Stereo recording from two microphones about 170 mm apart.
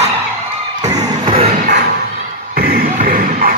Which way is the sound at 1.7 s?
70° right (ahead or behind).